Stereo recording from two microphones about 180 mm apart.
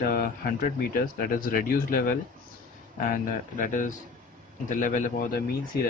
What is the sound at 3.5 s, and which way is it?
Speech, 45° left (ahead or behind).